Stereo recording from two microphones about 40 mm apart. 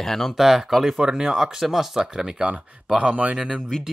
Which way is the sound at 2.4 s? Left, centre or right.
Right.